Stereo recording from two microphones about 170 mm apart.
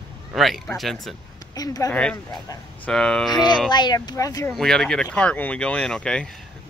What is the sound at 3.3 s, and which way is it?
Speech, 25° left (ahead or behind).